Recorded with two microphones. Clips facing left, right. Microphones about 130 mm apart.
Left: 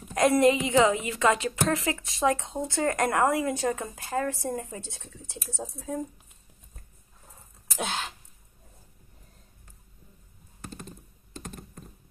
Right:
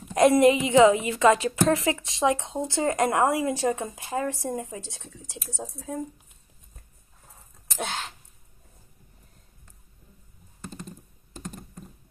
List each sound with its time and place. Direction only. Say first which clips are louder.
0.1 s a woman's voice: right 3 dB; 25° right (ahead or behind); by 4.8 s 10° right (ahead or behind)
4.8 s speech: right 1 dB; 5° left (ahead or behind)